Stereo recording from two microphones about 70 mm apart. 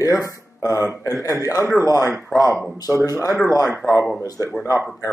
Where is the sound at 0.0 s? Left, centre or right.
Left.